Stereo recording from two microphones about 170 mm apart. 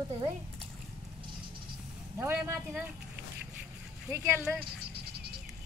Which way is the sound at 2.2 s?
15° right (ahead or behind).